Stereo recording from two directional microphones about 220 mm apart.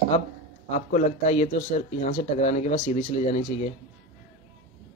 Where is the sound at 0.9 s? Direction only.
35° left (ahead or behind).